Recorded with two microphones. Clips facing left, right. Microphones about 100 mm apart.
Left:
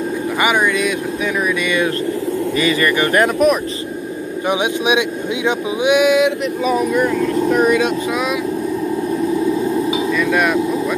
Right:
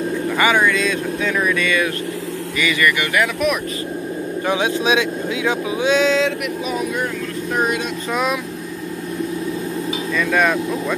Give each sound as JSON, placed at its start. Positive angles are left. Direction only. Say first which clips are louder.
{"t": 0.4, "sound": "speech", "louder": "even", "side_deg": 15}
{"t": 2.6, "sound": "speech", "louder": "left 2 dB", "side_deg": 35}
{"t": 4.5, "sound": "speech", "louder": "left 2 dB", "side_deg": 15}
{"t": 10.1, "sound": "speech", "louder": "right 1 dB", "side_deg": 5}